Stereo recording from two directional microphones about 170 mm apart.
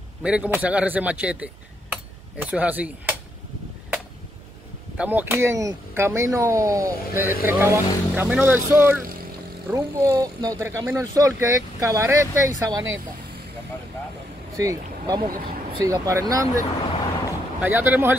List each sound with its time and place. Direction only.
0.2 s speech: 10° right (ahead or behind)
4.9 s speech: 10° right (ahead or behind)
14.6 s speech: 20° right (ahead or behind)